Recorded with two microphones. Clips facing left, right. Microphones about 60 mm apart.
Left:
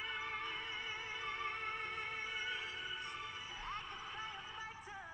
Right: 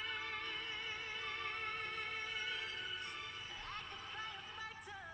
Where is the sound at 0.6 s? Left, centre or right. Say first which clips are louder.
Left 1 dB; right.